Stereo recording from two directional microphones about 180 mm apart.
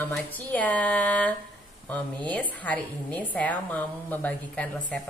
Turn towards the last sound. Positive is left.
turn(degrees=10)  # may be behind; listen again after turning